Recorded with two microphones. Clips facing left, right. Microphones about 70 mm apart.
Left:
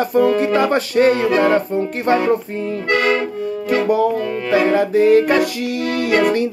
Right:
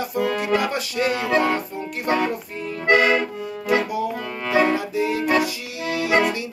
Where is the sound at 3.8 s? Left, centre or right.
Left.